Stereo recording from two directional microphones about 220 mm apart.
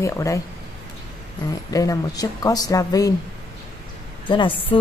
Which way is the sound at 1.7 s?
15° left (ahead or behind).